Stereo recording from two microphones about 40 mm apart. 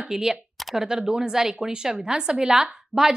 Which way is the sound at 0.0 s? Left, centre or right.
Centre.